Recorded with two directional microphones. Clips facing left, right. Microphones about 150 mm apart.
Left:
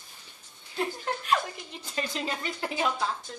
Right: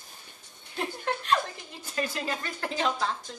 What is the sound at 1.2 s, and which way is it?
A woman's voice, 15° left (ahead or behind).